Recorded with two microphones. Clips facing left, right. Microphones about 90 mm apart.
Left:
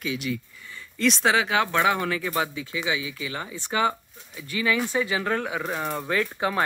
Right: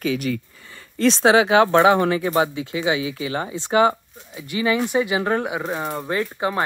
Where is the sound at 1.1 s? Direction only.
35° right (ahead or behind).